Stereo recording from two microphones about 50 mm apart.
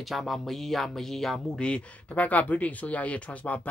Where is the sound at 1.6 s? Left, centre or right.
Left.